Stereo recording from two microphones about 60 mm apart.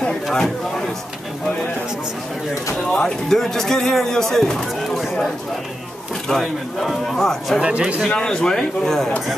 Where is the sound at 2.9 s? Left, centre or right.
Centre.